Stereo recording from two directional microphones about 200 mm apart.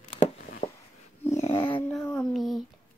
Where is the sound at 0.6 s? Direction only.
45° left (ahead or behind).